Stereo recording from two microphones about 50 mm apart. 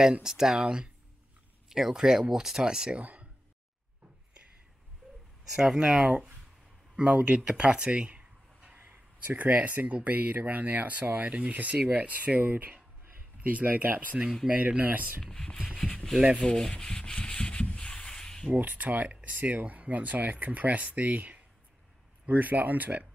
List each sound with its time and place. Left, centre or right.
0.2 s speech: centre
3.0 s a sound: right
5.0 s a sound: centre
5.4 s speech: centre
5.9 s speech: right
8.7 s speech: right
11.2 s speech: right
14.4 s speech: centre
14.8 s speech: right
15.2 s speech: centre
16.2 s speech: centre
16.4 s sanding: centre
18.5 s speech: right